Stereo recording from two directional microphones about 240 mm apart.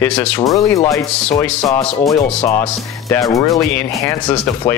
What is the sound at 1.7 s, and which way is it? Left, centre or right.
Speech, left.